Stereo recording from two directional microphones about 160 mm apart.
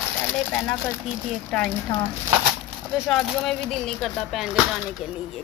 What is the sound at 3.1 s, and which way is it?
Speech, 5° left (ahead or behind).